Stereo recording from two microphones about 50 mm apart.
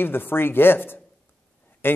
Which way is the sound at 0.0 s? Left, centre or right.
Left.